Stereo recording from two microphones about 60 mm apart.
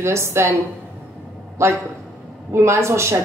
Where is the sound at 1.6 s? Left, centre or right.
Right.